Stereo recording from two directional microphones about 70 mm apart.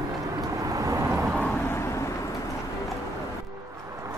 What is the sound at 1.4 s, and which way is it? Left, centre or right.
Vehicle, centre.